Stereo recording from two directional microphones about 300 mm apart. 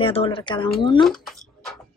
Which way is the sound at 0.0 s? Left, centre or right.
Centre.